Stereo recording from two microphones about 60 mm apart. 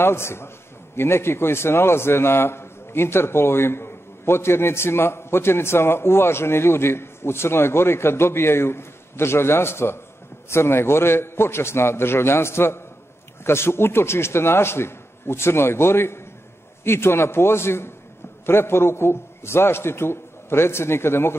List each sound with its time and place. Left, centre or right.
0.0 s a man's voice: left